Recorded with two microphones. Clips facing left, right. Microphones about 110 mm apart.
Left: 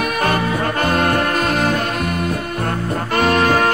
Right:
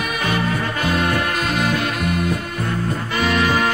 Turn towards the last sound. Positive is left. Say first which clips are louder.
# left 4 dB
turn(degrees=40)  # may be behind; listen again after turning